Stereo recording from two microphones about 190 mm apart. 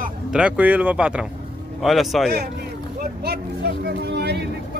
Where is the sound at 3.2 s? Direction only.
60° right (ahead or behind).